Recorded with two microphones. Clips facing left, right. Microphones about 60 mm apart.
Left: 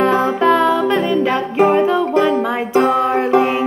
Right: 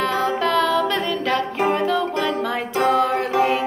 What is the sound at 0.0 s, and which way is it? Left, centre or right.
Music, left.